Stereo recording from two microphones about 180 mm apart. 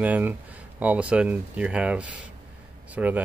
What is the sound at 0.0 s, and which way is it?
Speech, 10° right (ahead or behind).